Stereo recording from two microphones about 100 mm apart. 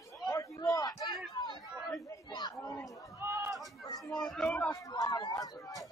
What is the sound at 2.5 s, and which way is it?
Chatter, 30° left (ahead or behind).